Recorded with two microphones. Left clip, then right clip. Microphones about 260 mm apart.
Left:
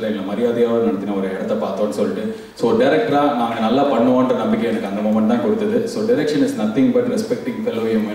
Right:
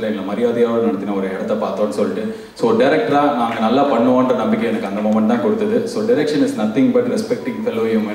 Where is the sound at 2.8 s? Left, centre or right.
Centre.